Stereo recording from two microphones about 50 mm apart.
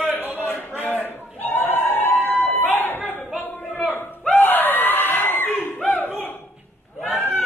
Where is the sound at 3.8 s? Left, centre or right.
Left.